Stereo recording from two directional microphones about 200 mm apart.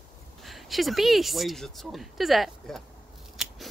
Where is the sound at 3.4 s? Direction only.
Centre (ahead or behind).